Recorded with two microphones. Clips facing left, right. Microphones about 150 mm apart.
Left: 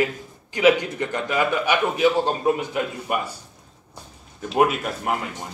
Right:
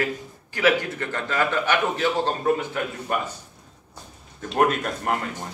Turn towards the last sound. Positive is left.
turn(degrees=5)  # may be behind; listen again after turning